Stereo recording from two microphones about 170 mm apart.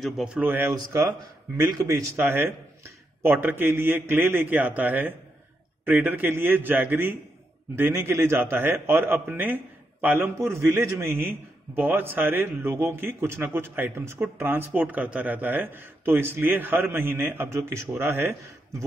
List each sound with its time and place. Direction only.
0.0 s speech: 5° right (ahead or behind)